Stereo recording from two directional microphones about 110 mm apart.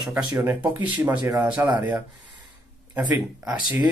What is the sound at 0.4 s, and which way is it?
Speech, 15° right (ahead or behind).